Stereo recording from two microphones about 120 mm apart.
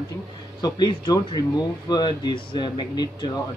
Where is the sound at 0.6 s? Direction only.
35° left (ahead or behind).